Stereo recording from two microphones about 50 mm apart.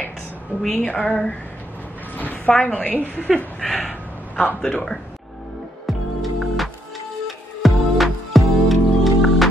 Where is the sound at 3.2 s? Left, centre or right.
Centre.